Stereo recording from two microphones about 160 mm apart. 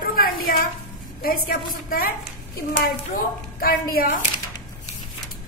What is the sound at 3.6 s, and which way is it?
Speech, 65° left (ahead or behind).